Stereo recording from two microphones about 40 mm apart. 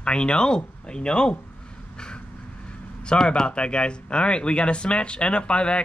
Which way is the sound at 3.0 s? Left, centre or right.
Left.